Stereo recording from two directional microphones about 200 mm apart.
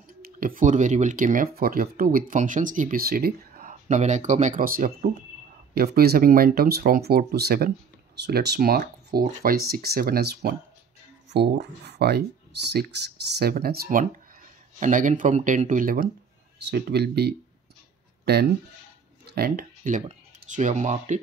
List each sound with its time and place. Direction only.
0.2 s speech: 45° right (ahead or behind)